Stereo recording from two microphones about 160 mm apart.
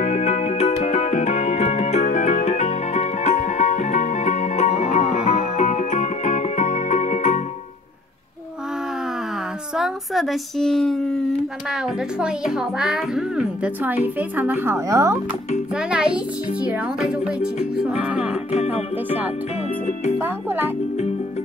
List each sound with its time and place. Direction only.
0.0 s music: 45° left (ahead or behind)
9.8 s speech: centre (ahead or behind)
12.2 s a child's voice: 5° right (ahead or behind); by 15.1 s 20° right (ahead or behind)
15.7 s a child's voice: 5° right (ahead or behind)